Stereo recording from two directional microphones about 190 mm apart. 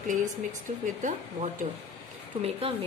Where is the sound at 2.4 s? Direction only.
30° right (ahead or behind).